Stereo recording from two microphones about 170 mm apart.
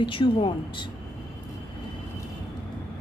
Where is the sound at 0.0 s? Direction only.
30° left (ahead or behind).